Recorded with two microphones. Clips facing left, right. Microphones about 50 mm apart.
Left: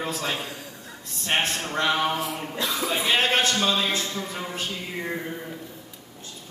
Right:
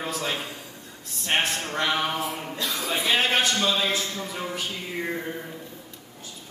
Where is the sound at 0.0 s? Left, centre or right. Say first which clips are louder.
Left 1 dB; centre.